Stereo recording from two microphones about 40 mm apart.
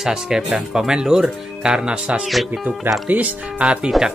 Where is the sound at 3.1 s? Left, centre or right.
Right.